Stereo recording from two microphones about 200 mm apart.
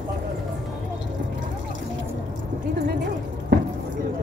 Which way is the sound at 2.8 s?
55° right (ahead or behind).